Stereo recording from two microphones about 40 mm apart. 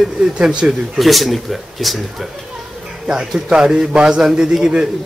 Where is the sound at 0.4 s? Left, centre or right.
Right.